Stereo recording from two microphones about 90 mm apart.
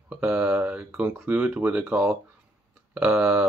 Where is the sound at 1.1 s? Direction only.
15° right (ahead or behind).